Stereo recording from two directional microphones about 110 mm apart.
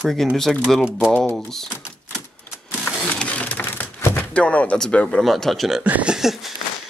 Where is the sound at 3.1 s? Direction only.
15° left (ahead or behind).